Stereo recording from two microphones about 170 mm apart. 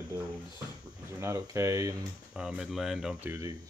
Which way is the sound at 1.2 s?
15° right (ahead or behind).